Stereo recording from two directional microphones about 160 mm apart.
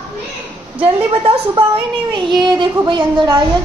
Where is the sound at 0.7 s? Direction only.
35° right (ahead or behind).